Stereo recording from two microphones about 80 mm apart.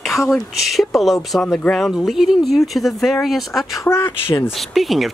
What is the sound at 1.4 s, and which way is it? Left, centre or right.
Speech, centre.